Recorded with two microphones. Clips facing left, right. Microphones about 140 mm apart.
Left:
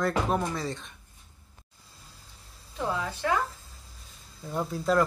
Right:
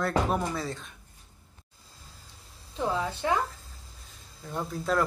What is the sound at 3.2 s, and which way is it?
Speech, 20° right (ahead or behind).